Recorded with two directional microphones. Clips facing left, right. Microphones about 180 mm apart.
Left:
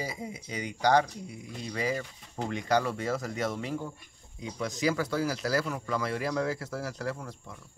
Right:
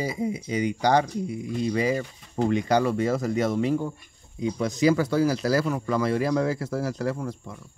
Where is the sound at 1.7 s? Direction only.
20° right (ahead or behind).